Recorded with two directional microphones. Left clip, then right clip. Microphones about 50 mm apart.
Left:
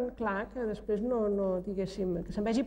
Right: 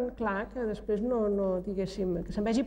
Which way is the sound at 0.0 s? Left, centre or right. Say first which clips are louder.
Right 1 dB; left.